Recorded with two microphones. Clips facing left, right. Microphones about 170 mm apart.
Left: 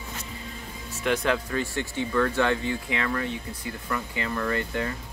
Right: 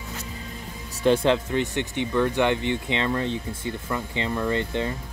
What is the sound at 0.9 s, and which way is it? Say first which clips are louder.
Speech: right 5 dB; 30° right (ahead or behind).